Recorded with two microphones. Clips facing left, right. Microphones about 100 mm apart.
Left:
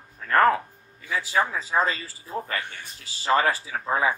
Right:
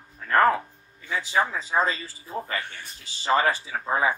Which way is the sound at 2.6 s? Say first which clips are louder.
Even; 10° left (ahead or behind).